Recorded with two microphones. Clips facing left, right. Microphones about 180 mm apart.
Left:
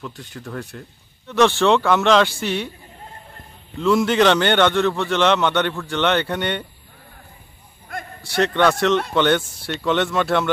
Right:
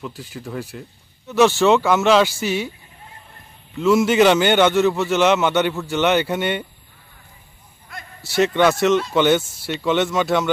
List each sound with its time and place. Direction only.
0.0 s a man's voice: 5° right (ahead or behind)
3.8 s a man's voice: 5° right (ahead or behind)
7.9 s a sound: 55° left (ahead or behind)
8.4 s a man's voice: 5° right (ahead or behind)